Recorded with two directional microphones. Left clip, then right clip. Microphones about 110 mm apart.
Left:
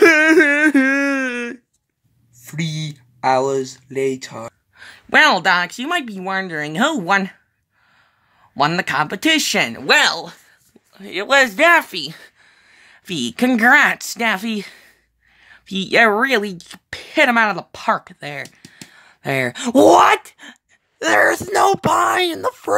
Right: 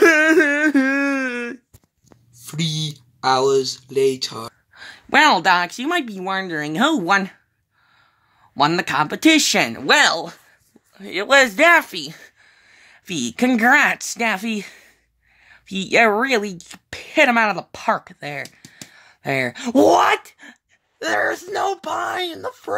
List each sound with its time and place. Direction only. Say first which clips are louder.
0.0 s whimper: left 2 dB; 10° left (ahead or behind)
2.7 s a sound: right 3 dB; 5° left (ahead or behind)
3.6 s speech: right 3 dB; 5° left (ahead or behind)
8.5 s speech: even; 5° left (ahead or behind)
9.9 s speech: even; 30° right (ahead or behind)
11.0 s speech: even; 5° right (ahead or behind)
19.5 s speech: left 4 dB; 20° left (ahead or behind)